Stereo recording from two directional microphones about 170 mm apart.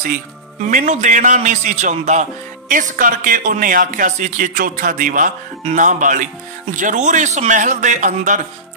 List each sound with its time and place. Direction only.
0.6 s speech: 45° right (ahead or behind)